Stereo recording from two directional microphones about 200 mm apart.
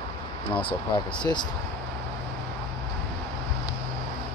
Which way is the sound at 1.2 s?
20° left (ahead or behind).